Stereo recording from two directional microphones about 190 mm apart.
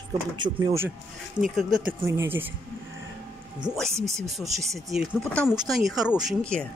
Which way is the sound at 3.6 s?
Centre (ahead or behind).